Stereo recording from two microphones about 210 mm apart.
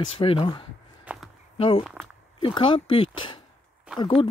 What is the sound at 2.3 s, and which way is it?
Speech, 20° left (ahead or behind).